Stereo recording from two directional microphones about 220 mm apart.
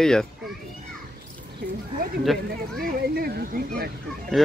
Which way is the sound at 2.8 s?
45° right (ahead or behind).